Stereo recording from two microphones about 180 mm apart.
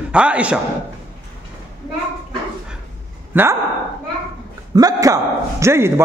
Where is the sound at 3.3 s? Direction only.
10° right (ahead or behind).